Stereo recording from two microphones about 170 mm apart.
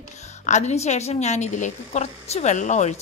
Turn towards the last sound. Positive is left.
turn(degrees=45)  # may be behind; listen again after turning